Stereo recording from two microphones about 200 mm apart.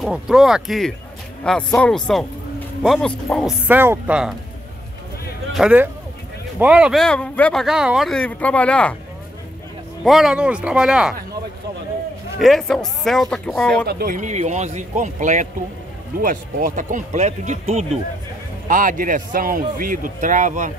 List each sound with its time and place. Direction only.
0.0 s speech: centre (ahead or behind)
3.6 s speech: 10° right (ahead or behind)
5.5 s speech: 5° right (ahead or behind)
10.0 s speech: centre (ahead or behind)
12.4 s speech: centre (ahead or behind)
13.8 s speech: 50° right (ahead or behind); by 17.8 s 35° right (ahead or behind)
18.7 s speech: 45° right (ahead or behind)